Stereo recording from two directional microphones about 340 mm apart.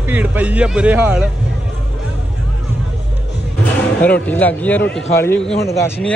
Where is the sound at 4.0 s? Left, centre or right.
Centre.